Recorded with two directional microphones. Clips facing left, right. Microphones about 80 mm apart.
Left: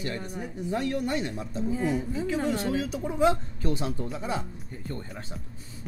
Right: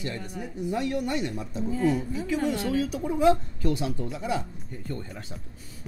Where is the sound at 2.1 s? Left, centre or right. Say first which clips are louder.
Even; left.